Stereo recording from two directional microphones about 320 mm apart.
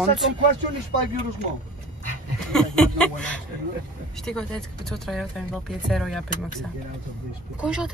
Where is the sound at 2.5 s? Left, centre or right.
Centre.